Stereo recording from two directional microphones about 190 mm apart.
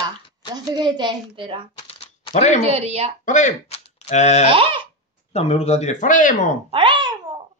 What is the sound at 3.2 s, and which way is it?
Speech, 40° left (ahead or behind).